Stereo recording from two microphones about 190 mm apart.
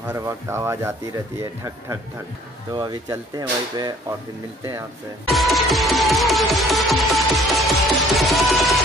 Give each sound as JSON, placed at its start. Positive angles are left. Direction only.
{"t": 0.1, "sound": "speech", "side_deg": -15}
{"t": 5.3, "sound": "music", "side_deg": 0}